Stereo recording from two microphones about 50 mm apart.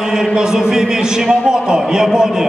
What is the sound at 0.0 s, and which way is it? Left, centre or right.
A man's voice, centre.